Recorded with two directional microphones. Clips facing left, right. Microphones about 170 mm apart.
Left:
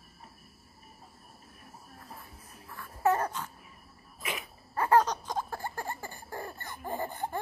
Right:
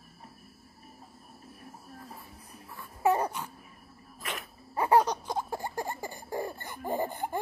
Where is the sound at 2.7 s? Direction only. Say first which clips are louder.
Right 1 dB; 15° right (ahead or behind).